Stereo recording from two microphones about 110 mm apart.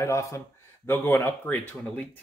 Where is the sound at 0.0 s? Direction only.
30° left (ahead or behind).